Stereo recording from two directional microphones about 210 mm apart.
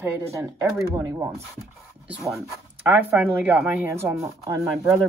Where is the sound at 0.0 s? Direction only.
10° right (ahead or behind).